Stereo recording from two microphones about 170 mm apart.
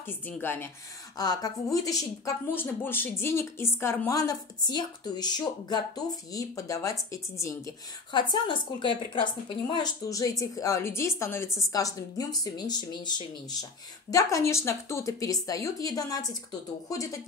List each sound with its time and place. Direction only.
0.0 s a woman's voice: 10° left (ahead or behind)
1.1 s a woman's voice: 20° left (ahead or behind)